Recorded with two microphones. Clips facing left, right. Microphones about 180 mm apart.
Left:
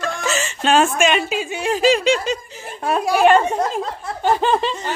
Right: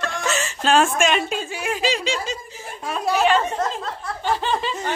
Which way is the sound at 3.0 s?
10° left (ahead or behind).